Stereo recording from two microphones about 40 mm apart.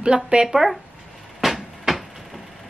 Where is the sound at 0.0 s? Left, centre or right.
Right.